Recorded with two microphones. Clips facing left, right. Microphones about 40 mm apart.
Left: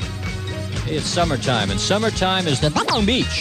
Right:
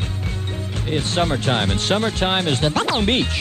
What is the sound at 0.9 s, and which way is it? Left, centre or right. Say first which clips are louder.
Speech: even; right.